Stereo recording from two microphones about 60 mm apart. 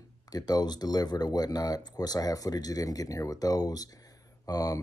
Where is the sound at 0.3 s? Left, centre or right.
Left.